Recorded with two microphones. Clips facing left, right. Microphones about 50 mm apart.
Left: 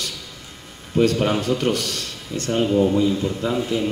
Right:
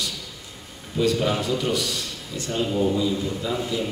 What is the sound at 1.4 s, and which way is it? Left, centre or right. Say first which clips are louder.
A man's voice: left 3 dB; left.